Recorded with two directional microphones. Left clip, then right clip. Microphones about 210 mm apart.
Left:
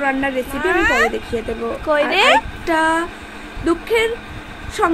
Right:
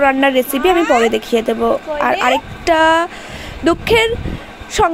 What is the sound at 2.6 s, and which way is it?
A woman's voice, 40° right (ahead or behind).